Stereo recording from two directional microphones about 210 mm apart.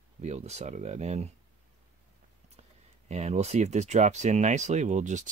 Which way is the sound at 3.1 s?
30° right (ahead or behind).